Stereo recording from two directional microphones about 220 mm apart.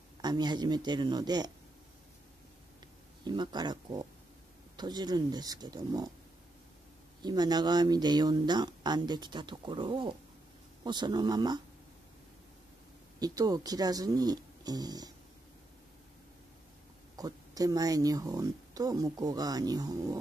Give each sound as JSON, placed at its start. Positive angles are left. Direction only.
{"t": 0.2, "sound": "speech", "side_deg": -20}
{"t": 3.3, "sound": "speech", "side_deg": -20}
{"t": 7.2, "sound": "speech", "side_deg": -20}
{"t": 13.2, "sound": "speech", "side_deg": -15}
{"t": 17.2, "sound": "speech", "side_deg": -15}